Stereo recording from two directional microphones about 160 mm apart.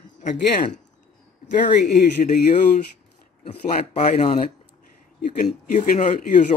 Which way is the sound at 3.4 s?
40° left (ahead or behind).